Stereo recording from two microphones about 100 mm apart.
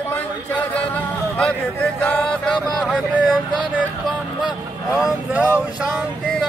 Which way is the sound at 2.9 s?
5° right (ahead or behind).